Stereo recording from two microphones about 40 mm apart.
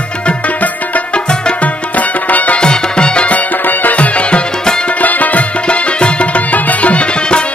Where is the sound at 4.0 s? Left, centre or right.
Left.